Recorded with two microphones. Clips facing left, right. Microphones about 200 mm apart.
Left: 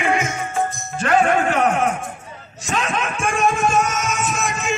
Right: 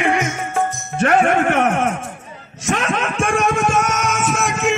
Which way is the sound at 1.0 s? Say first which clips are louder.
Right 2 dB; 65° right (ahead or behind).